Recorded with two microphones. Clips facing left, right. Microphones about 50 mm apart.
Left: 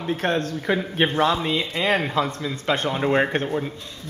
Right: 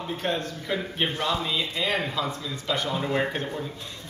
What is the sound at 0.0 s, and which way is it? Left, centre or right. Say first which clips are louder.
A man's voice: left 5 dB; left.